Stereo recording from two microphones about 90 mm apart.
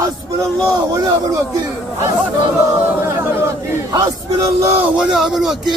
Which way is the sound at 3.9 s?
45° right (ahead or behind).